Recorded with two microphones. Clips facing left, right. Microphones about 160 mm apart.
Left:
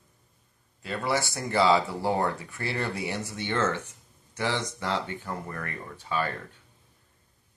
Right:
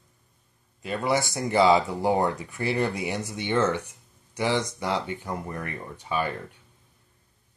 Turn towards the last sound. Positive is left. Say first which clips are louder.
# right 2 dB
turn(degrees=-15)  # may be behind; listen again after turning